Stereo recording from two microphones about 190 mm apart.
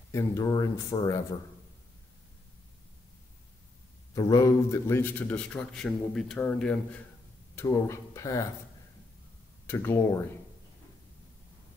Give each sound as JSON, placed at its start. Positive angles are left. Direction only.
{"t": 0.1, "sound": "a man's voice", "side_deg": 20}
{"t": 4.1, "sound": "a man's voice", "side_deg": 20}
{"t": 7.5, "sound": "a man's voice", "side_deg": 15}
{"t": 9.7, "sound": "a man's voice", "side_deg": 15}